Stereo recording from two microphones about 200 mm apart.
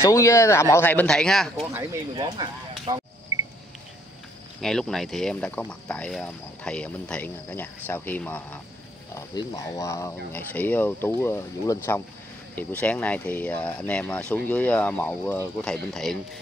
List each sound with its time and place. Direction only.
0.0 s speech: 15° left (ahead or behind)
1.7 s speech: 15° right (ahead or behind)
2.2 s a sound: 25° right (ahead or behind)
4.6 s speech: centre (ahead or behind)
9.1 s speech: 20° left (ahead or behind); by 16.2 s centre (ahead or behind)